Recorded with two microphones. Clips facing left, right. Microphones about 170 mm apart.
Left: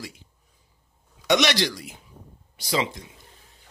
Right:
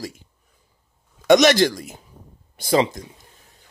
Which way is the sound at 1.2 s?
45° right (ahead or behind).